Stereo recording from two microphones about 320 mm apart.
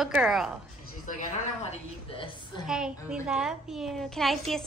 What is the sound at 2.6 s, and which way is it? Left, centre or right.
A woman's voice, centre.